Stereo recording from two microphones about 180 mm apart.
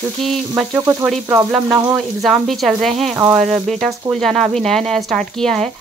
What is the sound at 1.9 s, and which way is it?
Speech, centre (ahead or behind).